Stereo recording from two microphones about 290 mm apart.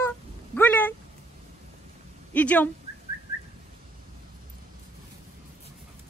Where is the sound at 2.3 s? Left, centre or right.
Centre.